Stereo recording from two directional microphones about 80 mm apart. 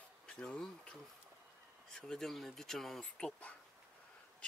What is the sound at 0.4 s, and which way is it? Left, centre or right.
Speech, centre.